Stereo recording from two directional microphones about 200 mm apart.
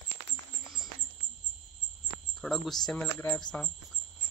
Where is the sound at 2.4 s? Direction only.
Centre (ahead or behind).